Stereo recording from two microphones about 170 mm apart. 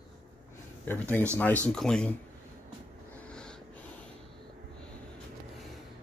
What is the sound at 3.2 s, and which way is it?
Wheeze, 5° left (ahead or behind).